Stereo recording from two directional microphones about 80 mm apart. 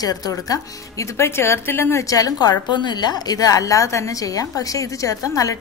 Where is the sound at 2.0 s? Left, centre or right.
Left.